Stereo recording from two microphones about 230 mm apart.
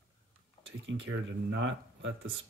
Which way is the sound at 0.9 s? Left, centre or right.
Right.